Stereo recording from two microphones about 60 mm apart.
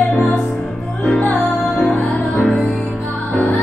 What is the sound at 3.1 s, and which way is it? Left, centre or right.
Music, left.